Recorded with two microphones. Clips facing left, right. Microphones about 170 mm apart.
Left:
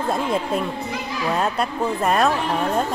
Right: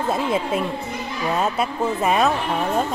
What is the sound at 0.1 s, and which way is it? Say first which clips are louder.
Speech: even; 5° right (ahead or behind).